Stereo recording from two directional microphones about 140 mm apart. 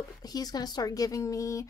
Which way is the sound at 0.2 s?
25° left (ahead or behind).